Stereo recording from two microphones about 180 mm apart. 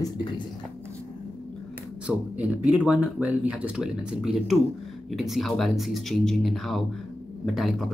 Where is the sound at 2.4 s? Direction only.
5° right (ahead or behind).